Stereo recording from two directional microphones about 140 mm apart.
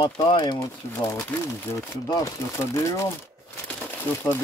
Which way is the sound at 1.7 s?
20° left (ahead or behind).